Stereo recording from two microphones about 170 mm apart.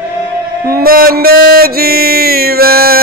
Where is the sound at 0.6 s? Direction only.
60° right (ahead or behind).